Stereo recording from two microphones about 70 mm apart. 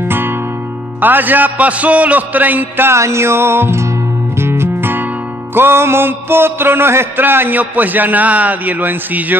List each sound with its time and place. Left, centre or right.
0.1 s music: right
2.9 s music: right